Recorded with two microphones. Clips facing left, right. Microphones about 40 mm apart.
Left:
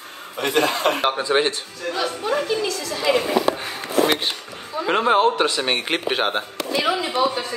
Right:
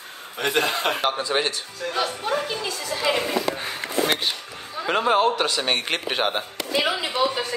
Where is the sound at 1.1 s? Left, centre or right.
Centre.